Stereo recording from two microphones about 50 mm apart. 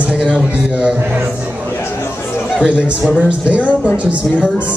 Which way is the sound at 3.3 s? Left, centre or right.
Right.